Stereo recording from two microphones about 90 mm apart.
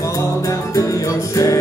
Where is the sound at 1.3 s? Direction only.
40° left (ahead or behind).